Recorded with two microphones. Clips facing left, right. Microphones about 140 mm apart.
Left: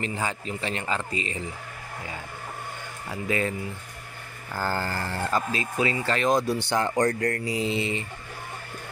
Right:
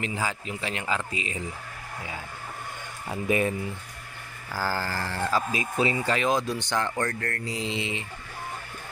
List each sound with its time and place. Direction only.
0.0 s speech: 5° right (ahead or behind)
3.1 s speech: 15° right (ahead or behind)
4.6 s speech: 5° right (ahead or behind)
5.8 s speech: 25° right (ahead or behind)
6.0 s speech: 5° right (ahead or behind)